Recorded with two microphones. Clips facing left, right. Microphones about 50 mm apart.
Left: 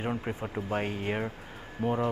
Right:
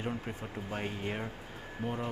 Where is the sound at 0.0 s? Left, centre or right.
Left.